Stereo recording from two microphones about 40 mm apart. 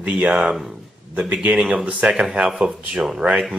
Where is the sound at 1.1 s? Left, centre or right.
Right.